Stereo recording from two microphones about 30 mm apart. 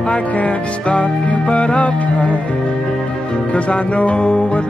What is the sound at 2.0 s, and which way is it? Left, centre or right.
Music, left.